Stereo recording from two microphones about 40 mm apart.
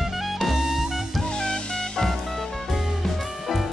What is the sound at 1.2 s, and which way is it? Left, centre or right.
Music, centre.